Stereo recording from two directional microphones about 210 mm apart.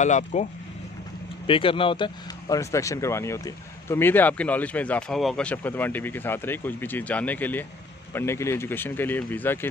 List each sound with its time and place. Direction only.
0.0 s speech: 35° left (ahead or behind)
1.5 s speech: 25° left (ahead or behind); by 9.7 s 10° left (ahead or behind)